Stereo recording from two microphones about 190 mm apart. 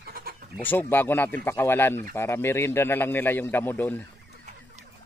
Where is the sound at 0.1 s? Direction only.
55° right (ahead or behind).